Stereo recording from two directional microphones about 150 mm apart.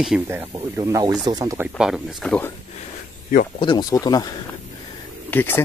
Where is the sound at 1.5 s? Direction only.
5° right (ahead or behind).